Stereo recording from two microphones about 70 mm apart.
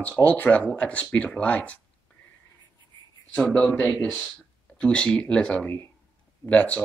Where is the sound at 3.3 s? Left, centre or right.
Centre.